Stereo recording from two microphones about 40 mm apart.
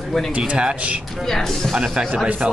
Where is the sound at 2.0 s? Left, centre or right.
Right.